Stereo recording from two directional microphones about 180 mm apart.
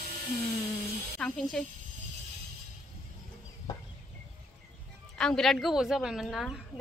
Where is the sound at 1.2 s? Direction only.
5° left (ahead or behind).